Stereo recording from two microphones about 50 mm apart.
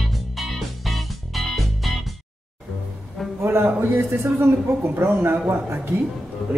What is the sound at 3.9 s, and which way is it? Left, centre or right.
A woman's voice, right.